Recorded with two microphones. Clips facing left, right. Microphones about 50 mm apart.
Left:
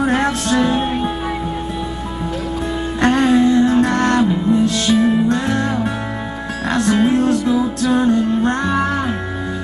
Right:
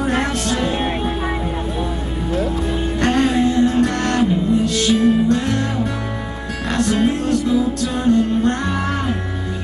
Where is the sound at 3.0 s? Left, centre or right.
Left.